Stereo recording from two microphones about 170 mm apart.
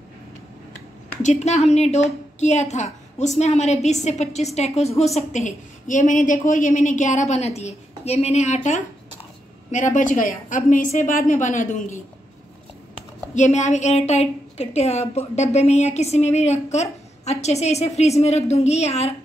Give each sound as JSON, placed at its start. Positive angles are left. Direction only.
{"t": 1.2, "sound": "a woman's voice", "side_deg": 40}
{"t": 9.7, "sound": "a woman's voice", "side_deg": 45}
{"t": 13.3, "sound": "a woman's voice", "side_deg": 45}